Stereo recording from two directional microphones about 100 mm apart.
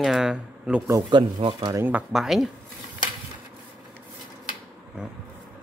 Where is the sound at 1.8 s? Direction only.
15° right (ahead or behind).